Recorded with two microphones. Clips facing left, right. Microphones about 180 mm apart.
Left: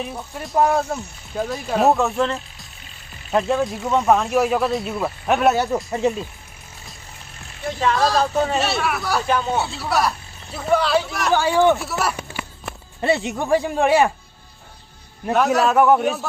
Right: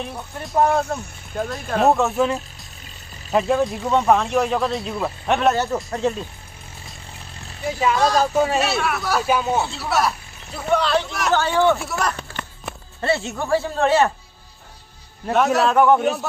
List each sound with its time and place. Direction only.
0.0 s speech: centre (ahead or behind)
7.6 s speech: 5° right (ahead or behind); by 11.8 s 15° left (ahead or behind)
12.0 s a sound: 10° left (ahead or behind)
12.7 s a sound: centre (ahead or behind)
13.0 s speech: 15° left (ahead or behind)
15.2 s speech: centre (ahead or behind)